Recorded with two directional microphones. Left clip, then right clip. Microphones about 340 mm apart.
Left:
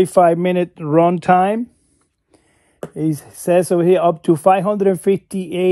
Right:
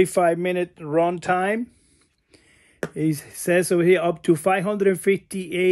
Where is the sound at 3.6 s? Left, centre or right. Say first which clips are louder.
Left 5 dB; centre.